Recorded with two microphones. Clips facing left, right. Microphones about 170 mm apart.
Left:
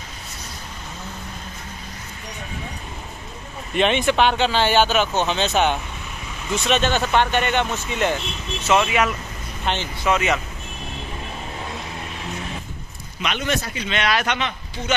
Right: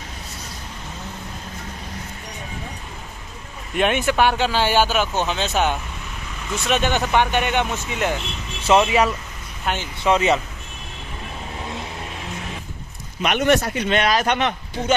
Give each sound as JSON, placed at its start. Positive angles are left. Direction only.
{"t": 3.7, "sound": "speech", "side_deg": -10}
{"t": 8.6, "sound": "speech", "side_deg": -30}
{"t": 9.7, "sound": "speech", "side_deg": -5}
{"t": 10.0, "sound": "speech", "side_deg": -30}
{"t": 13.2, "sound": "speech", "side_deg": -55}